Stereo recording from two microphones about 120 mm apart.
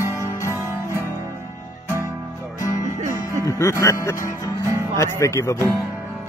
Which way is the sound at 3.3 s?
25° left (ahead or behind).